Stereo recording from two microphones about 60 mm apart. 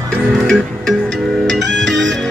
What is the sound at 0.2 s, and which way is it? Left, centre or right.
Music, centre.